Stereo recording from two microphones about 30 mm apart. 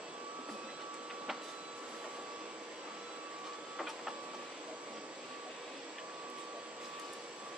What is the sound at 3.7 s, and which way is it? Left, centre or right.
Printer, centre.